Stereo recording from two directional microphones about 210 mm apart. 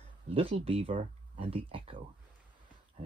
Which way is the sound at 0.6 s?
30° right (ahead or behind).